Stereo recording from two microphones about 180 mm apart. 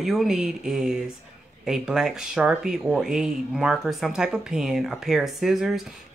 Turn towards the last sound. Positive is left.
turn(degrees=0)  # may be behind; listen again after turning